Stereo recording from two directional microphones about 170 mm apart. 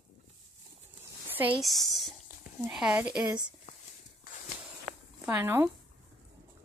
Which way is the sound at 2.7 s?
5° right (ahead or behind).